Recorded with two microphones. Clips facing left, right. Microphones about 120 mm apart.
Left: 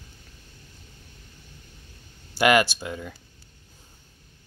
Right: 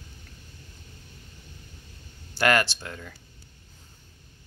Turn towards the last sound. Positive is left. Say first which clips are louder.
# left 6 dB
turn(degrees=10)  # may be behind; listen again after turning